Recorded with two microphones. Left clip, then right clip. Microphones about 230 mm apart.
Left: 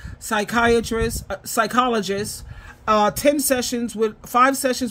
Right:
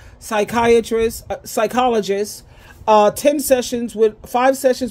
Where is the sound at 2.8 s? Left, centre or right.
Left.